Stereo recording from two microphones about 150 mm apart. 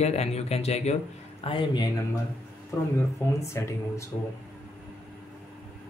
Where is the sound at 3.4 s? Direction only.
20° left (ahead or behind).